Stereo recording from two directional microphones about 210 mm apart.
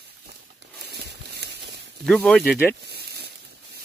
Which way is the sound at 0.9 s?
50° right (ahead or behind).